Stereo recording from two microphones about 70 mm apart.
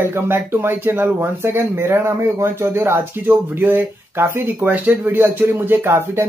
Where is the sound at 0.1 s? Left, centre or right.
Right.